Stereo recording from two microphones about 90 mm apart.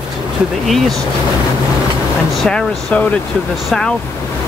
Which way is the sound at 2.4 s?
10° left (ahead or behind).